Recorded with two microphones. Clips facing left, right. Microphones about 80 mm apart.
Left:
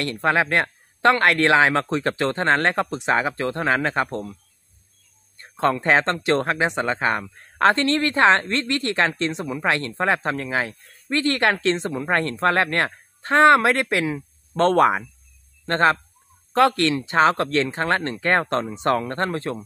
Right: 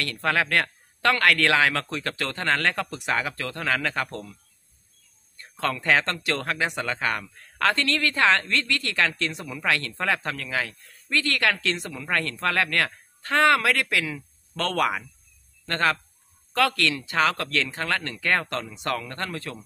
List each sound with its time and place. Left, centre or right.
0.0 s speech: left
5.4 s speech: left